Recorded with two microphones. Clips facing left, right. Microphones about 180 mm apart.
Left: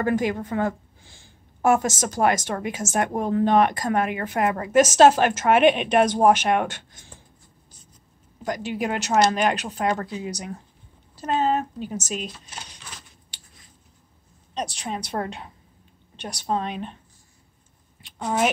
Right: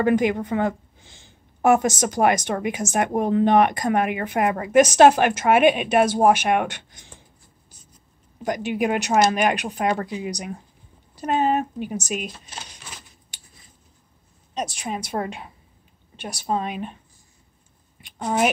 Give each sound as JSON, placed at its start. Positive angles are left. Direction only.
{"t": 0.0, "sound": "a woman's voice", "side_deg": -20}
{"t": 8.4, "sound": "a woman's voice", "side_deg": -15}
{"t": 14.5, "sound": "a woman's voice", "side_deg": -10}
{"t": 18.0, "sound": "speech", "side_deg": -15}